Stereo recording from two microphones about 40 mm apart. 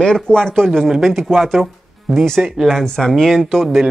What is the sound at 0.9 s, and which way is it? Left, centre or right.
Speech, centre.